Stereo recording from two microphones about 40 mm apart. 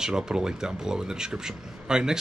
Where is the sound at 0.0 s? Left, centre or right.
Centre.